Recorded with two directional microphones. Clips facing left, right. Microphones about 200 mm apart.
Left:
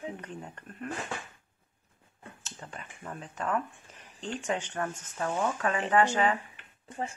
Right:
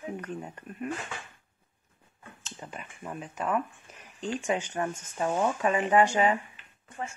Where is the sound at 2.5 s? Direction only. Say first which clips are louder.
Right 4 dB; 10° right (ahead or behind).